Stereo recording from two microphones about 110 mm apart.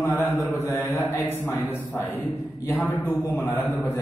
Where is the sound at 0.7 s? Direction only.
25° left (ahead or behind).